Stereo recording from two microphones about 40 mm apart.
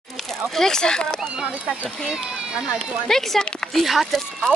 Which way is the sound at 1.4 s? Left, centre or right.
Right.